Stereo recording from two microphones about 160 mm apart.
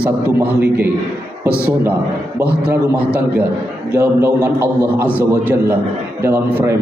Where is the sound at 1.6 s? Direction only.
10° right (ahead or behind).